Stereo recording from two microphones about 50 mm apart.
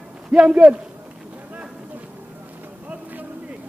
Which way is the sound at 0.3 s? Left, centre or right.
Centre.